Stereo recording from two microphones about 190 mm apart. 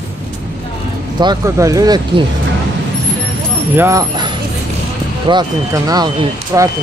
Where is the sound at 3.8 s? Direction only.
15° right (ahead or behind).